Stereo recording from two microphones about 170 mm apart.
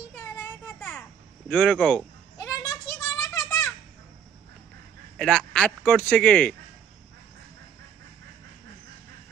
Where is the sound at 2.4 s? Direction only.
20° left (ahead or behind).